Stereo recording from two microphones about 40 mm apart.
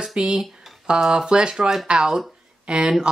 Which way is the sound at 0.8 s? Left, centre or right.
Centre.